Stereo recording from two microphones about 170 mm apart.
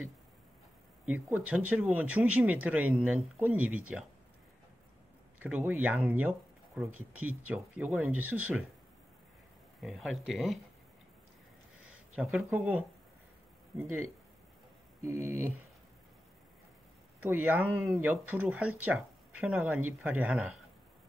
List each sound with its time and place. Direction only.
1.0 s speech: 10° right (ahead or behind)
5.4 s speech: 10° right (ahead or behind)
9.8 s speech: centre (ahead or behind)
12.2 s speech: 5° right (ahead or behind)
13.7 s speech: 20° right (ahead or behind)
15.0 s speech: 15° right (ahead or behind)
17.2 s speech: 10° right (ahead or behind)